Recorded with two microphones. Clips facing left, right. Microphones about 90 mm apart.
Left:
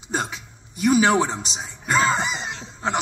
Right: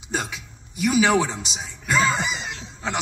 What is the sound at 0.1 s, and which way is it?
A man's voice, 30° left (ahead or behind).